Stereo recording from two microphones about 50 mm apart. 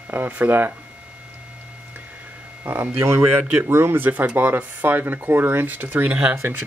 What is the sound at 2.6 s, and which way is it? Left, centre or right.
Speech, right.